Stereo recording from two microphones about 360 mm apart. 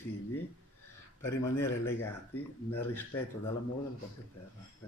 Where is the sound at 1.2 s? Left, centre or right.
Centre.